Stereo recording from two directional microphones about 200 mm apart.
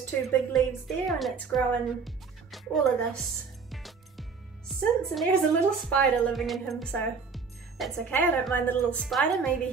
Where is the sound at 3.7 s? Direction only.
Centre (ahead or behind).